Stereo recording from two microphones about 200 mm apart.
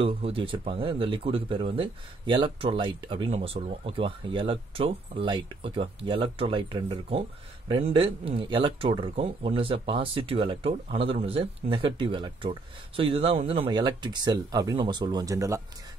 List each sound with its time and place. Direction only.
0.0 s speech: 25° right (ahead or behind)